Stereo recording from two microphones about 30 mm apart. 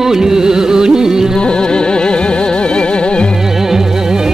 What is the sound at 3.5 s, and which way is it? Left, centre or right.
Music, centre.